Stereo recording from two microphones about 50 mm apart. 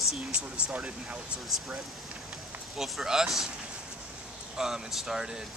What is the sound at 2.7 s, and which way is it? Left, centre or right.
Speech, centre.